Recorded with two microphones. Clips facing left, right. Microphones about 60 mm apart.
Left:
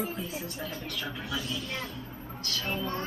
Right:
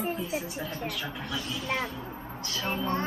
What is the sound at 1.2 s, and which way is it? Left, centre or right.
Speech, centre.